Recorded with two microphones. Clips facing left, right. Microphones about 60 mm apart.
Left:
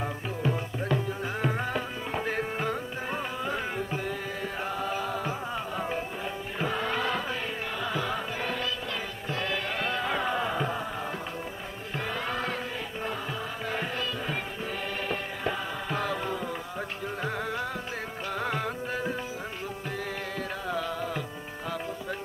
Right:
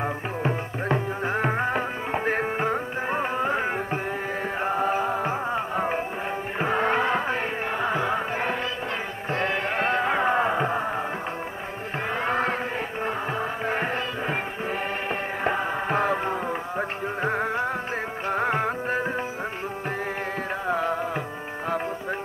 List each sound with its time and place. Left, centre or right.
0.0 s music: right
12.3 s music: right
13.7 s music: right
20.6 s music: right